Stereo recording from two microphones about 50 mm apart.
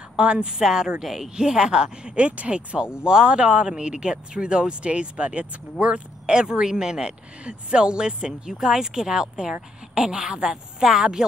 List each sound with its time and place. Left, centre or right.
0.2 s a woman's voice: centre
0.5 s speech: centre